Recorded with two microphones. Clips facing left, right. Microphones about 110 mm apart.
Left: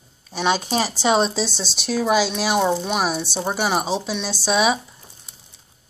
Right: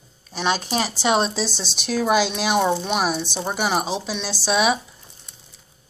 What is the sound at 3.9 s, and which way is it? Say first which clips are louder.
Speech: left 2 dB; 10° right (ahead or behind).